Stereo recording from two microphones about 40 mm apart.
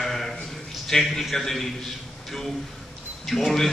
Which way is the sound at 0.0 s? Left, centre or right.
Centre.